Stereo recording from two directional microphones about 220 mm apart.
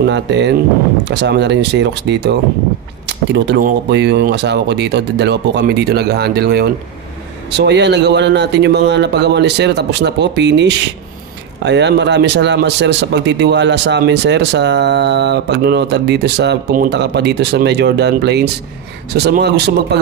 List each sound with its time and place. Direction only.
0.0 s speech: 50° right (ahead or behind)